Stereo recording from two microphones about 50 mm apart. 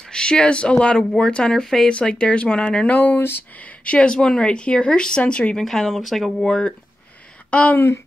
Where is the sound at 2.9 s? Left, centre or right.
Left.